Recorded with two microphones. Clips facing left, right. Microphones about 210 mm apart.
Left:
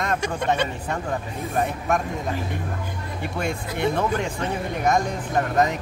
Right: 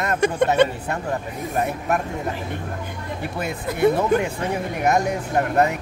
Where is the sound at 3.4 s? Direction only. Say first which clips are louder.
Right 4 dB; 5° right (ahead or behind).